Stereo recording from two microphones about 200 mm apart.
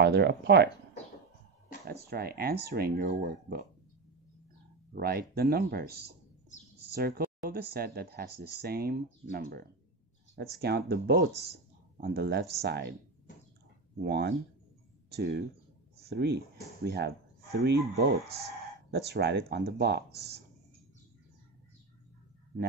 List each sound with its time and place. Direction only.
0.0 s speech: 55° right (ahead or behind)
1.9 s speech: 50° right (ahead or behind)
4.9 s speech: 50° right (ahead or behind)
13.9 s speech: 55° right (ahead or behind)